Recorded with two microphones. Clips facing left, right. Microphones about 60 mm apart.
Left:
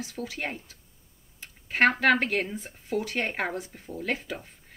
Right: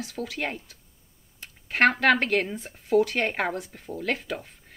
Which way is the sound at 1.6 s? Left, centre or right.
Right.